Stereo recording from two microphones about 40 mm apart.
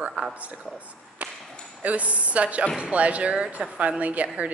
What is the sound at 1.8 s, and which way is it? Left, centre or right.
A woman's voice, right.